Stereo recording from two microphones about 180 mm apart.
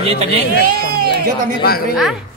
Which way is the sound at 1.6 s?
60° left (ahead or behind).